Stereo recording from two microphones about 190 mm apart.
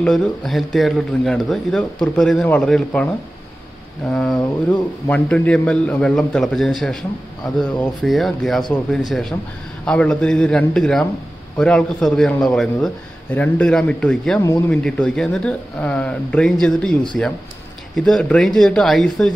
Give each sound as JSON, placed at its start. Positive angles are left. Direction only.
{"t": 0.0, "sound": "a man's voice", "side_deg": 5}
{"t": 14.4, "sound": "speech", "side_deg": 15}
{"t": 14.8, "sound": "a man's voice", "side_deg": 5}